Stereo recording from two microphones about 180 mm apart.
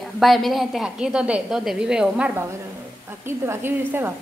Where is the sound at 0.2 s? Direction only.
Centre (ahead or behind).